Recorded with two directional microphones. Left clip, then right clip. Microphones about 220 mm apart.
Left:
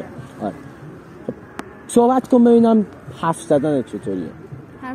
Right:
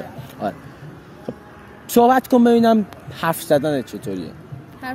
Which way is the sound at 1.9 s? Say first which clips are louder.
Right 1 dB; 25° right (ahead or behind).